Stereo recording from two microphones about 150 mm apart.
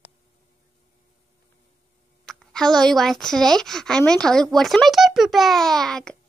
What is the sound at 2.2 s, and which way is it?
A woman's voice, 5° left (ahead or behind).